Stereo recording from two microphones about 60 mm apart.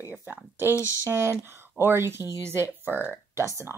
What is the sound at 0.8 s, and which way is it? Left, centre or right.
Speech, left.